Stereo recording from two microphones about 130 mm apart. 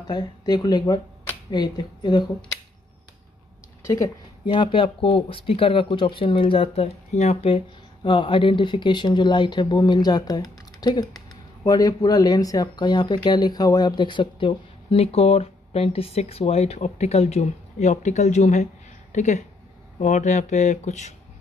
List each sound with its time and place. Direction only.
0.0 s speech: 30° left (ahead or behind)
3.8 s a woman's voice: 25° left (ahead or behind)
4.5 s speech: 40° left (ahead or behind); by 21.1 s 65° left (ahead or behind)